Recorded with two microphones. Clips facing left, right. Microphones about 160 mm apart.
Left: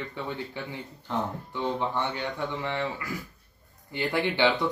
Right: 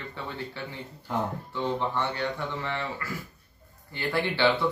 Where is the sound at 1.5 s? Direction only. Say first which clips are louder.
Even; 15° left (ahead or behind).